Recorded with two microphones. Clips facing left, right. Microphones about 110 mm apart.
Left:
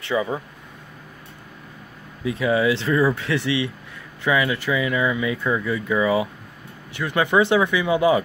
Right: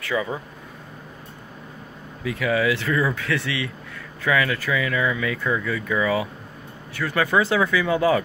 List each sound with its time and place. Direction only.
0.0 s speech: 25° left (ahead or behind)
2.2 s speech: 25° left (ahead or behind)